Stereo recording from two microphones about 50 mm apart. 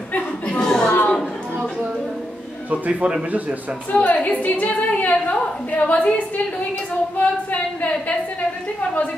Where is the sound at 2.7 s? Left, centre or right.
Right.